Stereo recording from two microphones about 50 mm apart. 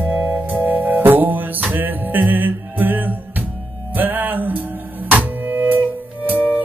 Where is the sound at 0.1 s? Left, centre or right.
Right.